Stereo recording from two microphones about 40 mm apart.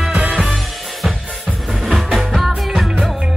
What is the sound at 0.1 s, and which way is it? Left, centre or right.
Music, right.